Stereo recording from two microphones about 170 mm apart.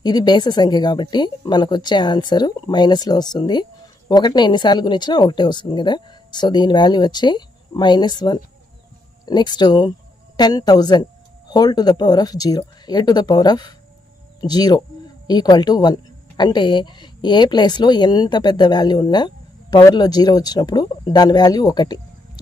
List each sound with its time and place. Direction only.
0.0 s a woman's voice: 25° left (ahead or behind)